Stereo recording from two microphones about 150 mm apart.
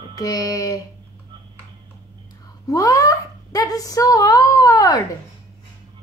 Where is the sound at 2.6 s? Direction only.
20° left (ahead or behind).